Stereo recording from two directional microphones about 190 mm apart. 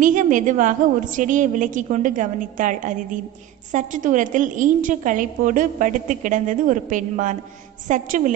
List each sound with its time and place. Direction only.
0.0 s a woman's voice: 45° right (ahead or behind)